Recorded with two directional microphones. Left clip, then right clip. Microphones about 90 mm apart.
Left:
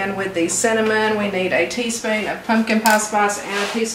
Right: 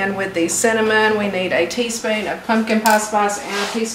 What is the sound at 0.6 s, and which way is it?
A woman's voice, 20° right (ahead or behind).